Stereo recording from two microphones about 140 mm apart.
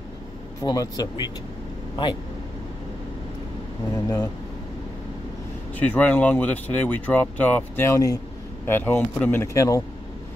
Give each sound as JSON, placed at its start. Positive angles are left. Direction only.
{"t": 0.6, "sound": "speech", "side_deg": 25}
{"t": 3.9, "sound": "speech", "side_deg": 25}
{"t": 5.8, "sound": "speech", "side_deg": 10}